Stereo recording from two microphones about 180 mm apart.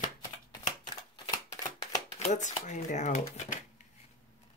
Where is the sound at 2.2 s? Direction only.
40° left (ahead or behind).